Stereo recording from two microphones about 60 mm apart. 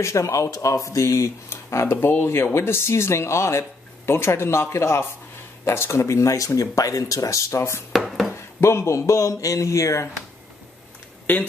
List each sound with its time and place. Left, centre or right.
0.0 s speech: left
1.9 s speech: left
7.9 s dishes: centre
8.5 s speech: left
11.3 s speech: left